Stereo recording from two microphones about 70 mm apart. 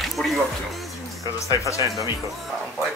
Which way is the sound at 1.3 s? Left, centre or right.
Left.